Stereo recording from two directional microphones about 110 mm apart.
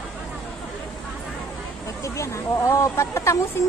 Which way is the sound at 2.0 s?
30° left (ahead or behind).